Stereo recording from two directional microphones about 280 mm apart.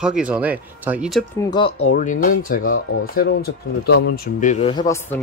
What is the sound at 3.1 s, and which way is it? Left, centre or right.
Speech, left.